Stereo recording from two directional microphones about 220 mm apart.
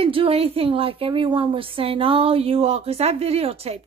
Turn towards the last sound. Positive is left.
turn(degrees=-25)  # may be behind; listen again after turning